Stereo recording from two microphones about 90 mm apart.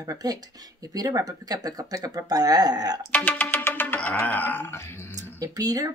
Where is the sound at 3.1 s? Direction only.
20° left (ahead or behind).